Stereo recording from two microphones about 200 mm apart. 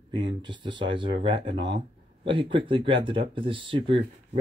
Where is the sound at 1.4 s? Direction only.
65° right (ahead or behind).